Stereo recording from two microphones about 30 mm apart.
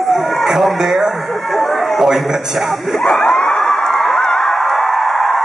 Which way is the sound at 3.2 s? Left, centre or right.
Left.